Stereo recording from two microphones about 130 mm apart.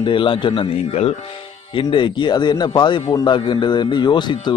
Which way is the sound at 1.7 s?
40° left (ahead or behind).